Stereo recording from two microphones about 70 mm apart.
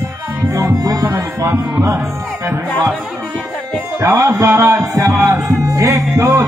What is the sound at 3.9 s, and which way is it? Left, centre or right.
Music, right.